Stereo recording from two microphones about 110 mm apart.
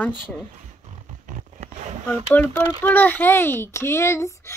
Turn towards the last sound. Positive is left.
turn(degrees=25)  # may be behind; listen again after turning